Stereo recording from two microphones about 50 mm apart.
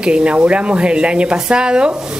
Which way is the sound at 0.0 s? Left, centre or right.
Right.